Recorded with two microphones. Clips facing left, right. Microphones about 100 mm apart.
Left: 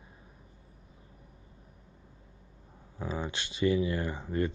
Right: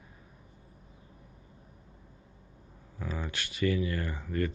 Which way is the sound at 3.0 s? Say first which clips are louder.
Left 2 dB; 25° left (ahead or behind).